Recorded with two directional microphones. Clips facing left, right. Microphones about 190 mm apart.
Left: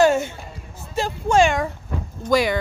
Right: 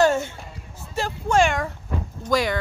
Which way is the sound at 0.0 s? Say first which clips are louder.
Left 2 dB; 15° left (ahead or behind).